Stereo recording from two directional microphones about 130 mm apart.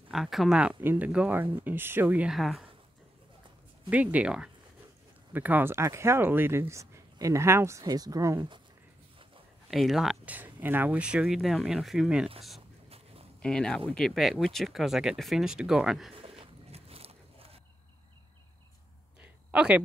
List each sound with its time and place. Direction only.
0.1 s speech: centre (ahead or behind)
3.9 s speech: 10° right (ahead or behind)
9.7 s speech: centre (ahead or behind)
13.4 s speech: 5° left (ahead or behind)
16.2 s a sound: 45° right (ahead or behind)
19.2 s a sound: 5° right (ahead or behind)